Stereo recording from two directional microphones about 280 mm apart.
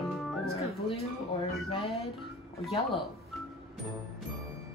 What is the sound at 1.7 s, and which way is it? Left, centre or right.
Speech, left.